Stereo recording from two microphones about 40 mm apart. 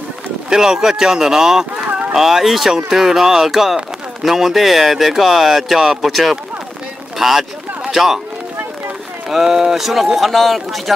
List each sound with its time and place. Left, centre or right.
0.5 s speech: centre
9.3 s speech: centre